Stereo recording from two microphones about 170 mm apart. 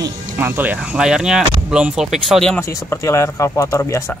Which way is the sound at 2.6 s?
15° left (ahead or behind).